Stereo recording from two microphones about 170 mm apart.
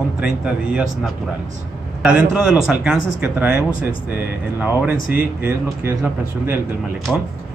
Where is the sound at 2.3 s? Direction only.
5° right (ahead or behind).